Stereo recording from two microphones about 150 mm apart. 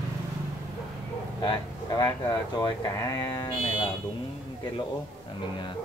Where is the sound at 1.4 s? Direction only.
25° left (ahead or behind).